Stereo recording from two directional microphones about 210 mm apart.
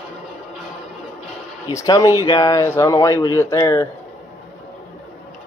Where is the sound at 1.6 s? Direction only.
15° left (ahead or behind).